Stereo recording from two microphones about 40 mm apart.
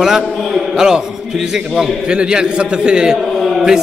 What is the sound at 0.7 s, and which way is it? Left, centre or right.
A man's voice, centre.